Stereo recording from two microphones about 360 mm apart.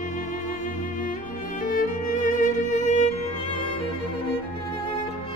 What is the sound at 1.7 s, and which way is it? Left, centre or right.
Music, left.